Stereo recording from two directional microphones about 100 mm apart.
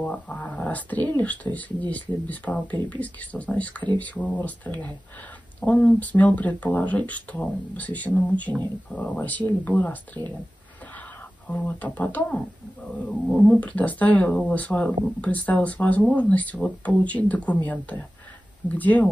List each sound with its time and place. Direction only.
0.0 s speech: 15° left (ahead or behind)
5.6 s speech: 15° left (ahead or behind)
11.4 s speech: 10° left (ahead or behind)